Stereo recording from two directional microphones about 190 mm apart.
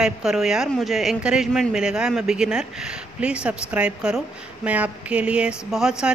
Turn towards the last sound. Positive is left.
turn(degrees=-5)  # may be behind; listen again after turning